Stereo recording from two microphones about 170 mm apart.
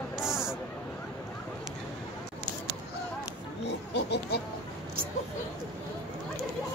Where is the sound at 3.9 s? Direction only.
85° left.